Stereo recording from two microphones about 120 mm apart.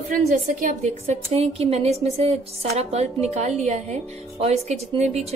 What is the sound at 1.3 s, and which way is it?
Speech, 55° right (ahead or behind).